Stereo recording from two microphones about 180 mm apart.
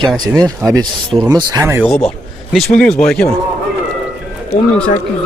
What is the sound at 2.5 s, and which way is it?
Speech, 5° left (ahead or behind).